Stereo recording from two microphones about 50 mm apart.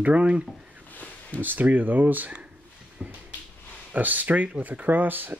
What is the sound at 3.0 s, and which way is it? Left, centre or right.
Finger snapping, right.